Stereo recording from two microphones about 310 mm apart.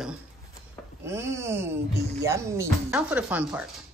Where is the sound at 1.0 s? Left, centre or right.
Centre.